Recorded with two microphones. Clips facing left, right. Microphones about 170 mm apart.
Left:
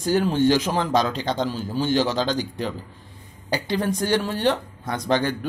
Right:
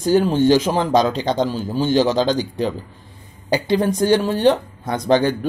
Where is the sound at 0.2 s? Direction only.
25° right (ahead or behind).